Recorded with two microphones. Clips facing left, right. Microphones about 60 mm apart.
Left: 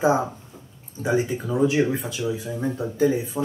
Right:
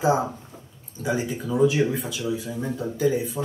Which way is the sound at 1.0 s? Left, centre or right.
Left.